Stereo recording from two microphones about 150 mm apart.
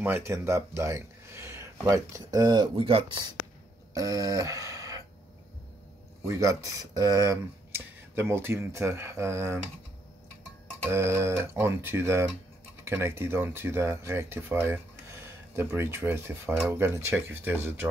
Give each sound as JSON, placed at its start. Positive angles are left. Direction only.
{"t": 0.0, "sound": "speech", "side_deg": -15}
{"t": 3.9, "sound": "a sound", "side_deg": -25}
{"t": 6.2, "sound": "speech", "side_deg": -20}
{"t": 10.9, "sound": "speech", "side_deg": -15}